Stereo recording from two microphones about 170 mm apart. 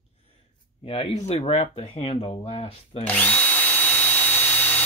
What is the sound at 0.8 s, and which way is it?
Speech, 35° left (ahead or behind).